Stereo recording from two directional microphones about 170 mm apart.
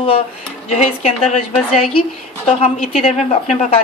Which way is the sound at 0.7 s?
40° left (ahead or behind).